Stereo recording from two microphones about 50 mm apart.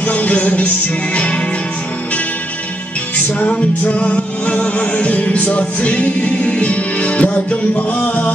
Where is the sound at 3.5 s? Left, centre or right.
Left.